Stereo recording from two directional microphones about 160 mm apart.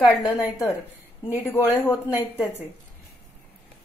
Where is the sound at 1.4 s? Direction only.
15° left (ahead or behind).